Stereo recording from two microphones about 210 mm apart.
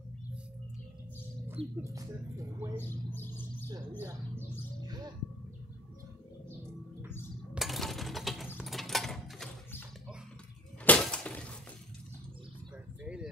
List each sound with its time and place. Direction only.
1.8 s speech: 15° right (ahead or behind)
2.8 s bird: 10° left (ahead or behind)
4.0 s speech: 15° right (ahead or behind)
7.5 s mechanisms: centre (ahead or behind)
8.5 s a sound: centre (ahead or behind)
10.9 s breaking: 5° left (ahead or behind)
13.0 s a sound: 5° right (ahead or behind)